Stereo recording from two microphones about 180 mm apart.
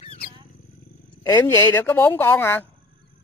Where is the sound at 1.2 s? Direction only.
20° left (ahead or behind).